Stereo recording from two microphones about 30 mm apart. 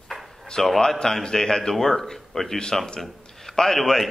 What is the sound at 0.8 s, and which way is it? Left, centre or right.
A man's voice, left.